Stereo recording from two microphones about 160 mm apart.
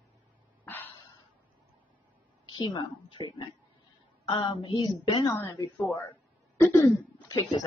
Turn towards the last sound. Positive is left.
turn(degrees=20)  # may be behind; listen again after turning